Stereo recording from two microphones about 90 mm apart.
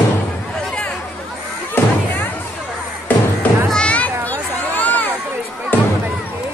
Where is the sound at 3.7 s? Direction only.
15° left (ahead or behind).